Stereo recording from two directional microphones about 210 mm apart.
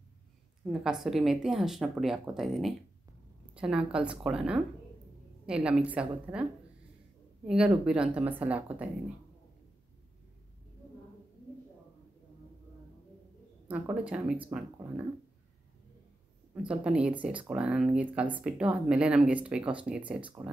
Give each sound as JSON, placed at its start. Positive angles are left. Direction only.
{"t": 0.7, "sound": "speech", "side_deg": 0}
{"t": 7.4, "sound": "speech", "side_deg": -5}
{"t": 13.7, "sound": "speech", "side_deg": -5}
{"t": 16.8, "sound": "speech", "side_deg": -5}